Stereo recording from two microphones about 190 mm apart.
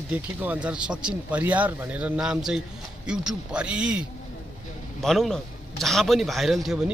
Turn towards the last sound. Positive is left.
turn(degrees=0)  # may be behind; listen again after turning